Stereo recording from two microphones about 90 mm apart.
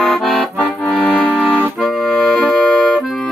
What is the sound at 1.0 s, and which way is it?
Music, 15° left (ahead or behind).